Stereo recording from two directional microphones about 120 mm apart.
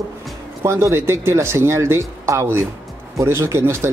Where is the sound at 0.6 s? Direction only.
25° right (ahead or behind).